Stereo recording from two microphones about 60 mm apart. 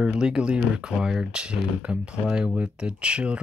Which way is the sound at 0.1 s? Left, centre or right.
Centre.